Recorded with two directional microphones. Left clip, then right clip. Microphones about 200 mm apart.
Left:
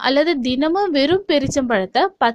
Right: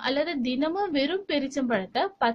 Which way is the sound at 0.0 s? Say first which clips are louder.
Left 10 dB; 45° left (ahead or behind).